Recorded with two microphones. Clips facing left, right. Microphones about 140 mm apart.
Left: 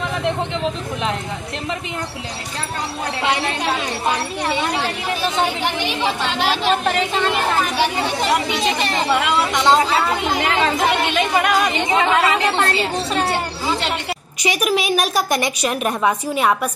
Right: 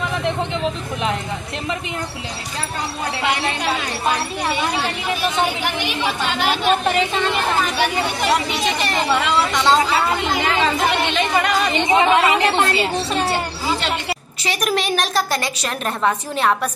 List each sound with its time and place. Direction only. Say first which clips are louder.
5.6 s a woman's voice: left 1 dB; 30° left (ahead or behind)
9.1 s a woman's voice: even; 15° left (ahead or behind)
11.1 s a woman's voice: left 1 dB; 5° left (ahead or behind)
11.9 s a woman's voice: right 3 dB; 15° right (ahead or behind)
14.4 s a woman's voice: left 2 dB; 10° left (ahead or behind)